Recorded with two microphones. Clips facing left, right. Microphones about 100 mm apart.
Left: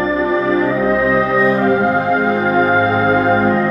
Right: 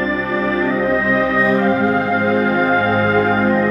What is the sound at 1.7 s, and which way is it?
Music, 25° left (ahead or behind).